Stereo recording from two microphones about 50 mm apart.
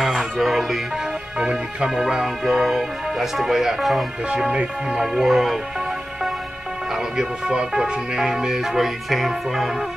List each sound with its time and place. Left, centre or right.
0.0 s music: centre
1.4 s speech: centre
1.9 s speech: centre
4.3 s music: centre
5.0 s speech: centre
7.2 s speech: centre